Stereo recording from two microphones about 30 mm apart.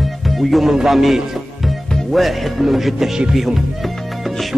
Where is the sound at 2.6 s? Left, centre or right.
Centre.